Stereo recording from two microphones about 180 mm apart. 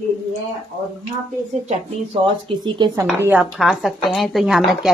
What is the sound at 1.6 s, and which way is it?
Speech, 40° right (ahead or behind).